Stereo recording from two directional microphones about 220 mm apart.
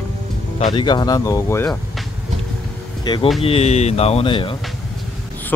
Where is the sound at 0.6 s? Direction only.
25° left (ahead or behind).